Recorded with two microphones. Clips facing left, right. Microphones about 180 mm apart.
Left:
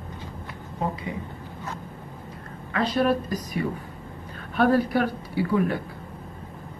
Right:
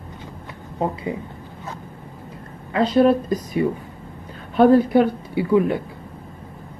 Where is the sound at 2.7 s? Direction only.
25° right (ahead or behind).